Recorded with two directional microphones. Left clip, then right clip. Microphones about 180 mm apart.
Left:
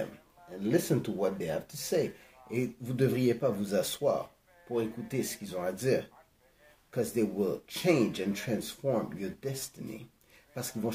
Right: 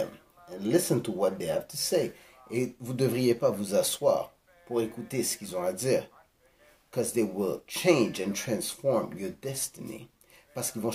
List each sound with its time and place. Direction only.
0.5 s speech: 15° left (ahead or behind)